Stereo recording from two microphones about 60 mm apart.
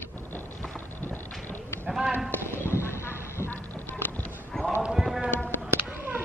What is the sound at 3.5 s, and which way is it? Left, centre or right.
Music, left.